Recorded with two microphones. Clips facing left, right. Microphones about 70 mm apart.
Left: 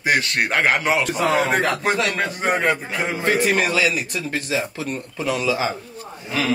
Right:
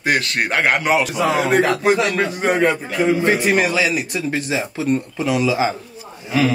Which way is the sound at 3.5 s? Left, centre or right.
Right.